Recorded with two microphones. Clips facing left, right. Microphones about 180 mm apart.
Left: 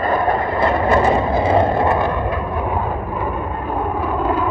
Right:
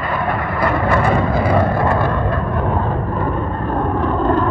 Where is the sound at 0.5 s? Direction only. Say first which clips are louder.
Even; 25° left (ahead or behind).